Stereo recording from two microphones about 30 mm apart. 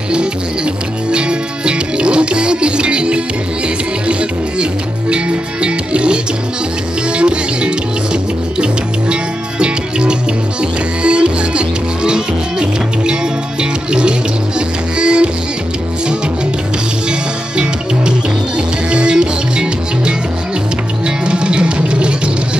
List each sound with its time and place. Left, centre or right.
1.1 s music: right
7.2 s music: right
18.9 s music: right
21.3 s music: right